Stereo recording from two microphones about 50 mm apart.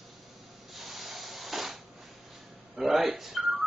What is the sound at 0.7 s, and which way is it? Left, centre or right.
Spray, centre.